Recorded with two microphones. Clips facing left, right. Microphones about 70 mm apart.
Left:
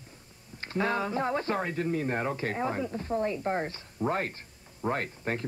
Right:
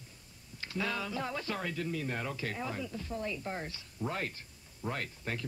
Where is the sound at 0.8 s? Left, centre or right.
Left.